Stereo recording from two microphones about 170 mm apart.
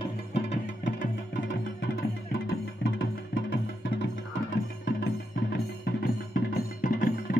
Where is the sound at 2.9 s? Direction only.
90° left.